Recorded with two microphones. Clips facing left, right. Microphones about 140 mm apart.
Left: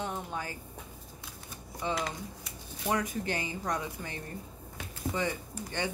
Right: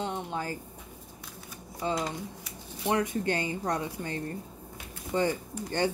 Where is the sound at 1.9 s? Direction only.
20° right (ahead or behind).